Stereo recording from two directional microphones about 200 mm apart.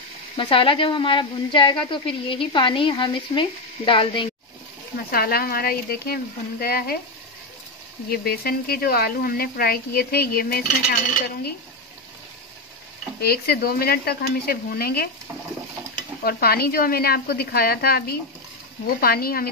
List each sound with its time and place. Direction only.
0.4 s a woman's voice: 25° left (ahead or behind)
5.1 s speech: 50° left (ahead or behind)
8.1 s speech: 50° left (ahead or behind)
13.2 s speech: 50° left (ahead or behind)
16.3 s speech: 50° left (ahead or behind)